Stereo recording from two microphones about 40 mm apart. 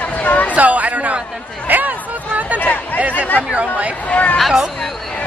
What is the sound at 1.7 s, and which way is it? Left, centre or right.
Hubbub, right.